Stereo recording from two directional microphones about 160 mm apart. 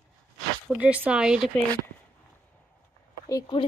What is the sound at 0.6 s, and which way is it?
Speech, 10° right (ahead or behind).